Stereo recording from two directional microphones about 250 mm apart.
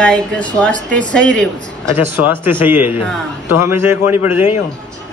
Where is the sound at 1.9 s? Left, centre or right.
Centre.